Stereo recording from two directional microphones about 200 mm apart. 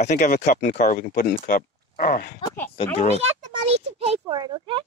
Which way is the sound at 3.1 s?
30° right (ahead or behind).